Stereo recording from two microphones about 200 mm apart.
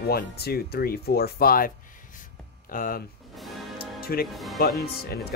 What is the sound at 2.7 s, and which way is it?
Speech, 45° left (ahead or behind).